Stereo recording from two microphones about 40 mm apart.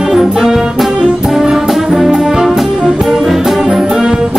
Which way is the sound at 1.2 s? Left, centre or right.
Centre.